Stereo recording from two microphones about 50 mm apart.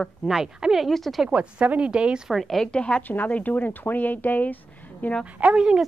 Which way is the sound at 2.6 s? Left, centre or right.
Centre.